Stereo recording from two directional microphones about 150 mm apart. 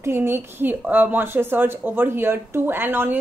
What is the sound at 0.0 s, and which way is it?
A woman's voice, 15° right (ahead or behind).